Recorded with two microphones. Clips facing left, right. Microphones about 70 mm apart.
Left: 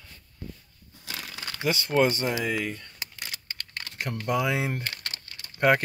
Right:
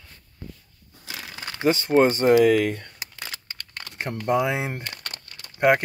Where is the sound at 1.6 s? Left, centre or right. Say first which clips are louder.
Right 5 dB; right.